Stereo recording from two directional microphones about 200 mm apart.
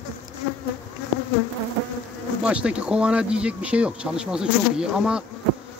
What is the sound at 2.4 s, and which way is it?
Speech, 5° right (ahead or behind).